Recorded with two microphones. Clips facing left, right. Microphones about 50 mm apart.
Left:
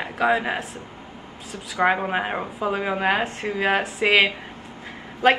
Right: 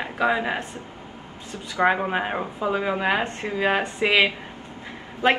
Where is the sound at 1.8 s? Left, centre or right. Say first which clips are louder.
Even; centre.